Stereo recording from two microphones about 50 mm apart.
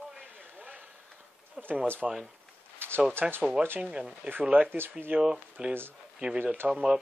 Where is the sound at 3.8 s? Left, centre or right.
Right.